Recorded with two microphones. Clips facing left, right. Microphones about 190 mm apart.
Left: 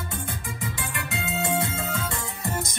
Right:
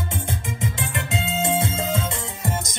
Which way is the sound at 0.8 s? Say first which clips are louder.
Right 5 dB; 25° right (ahead or behind).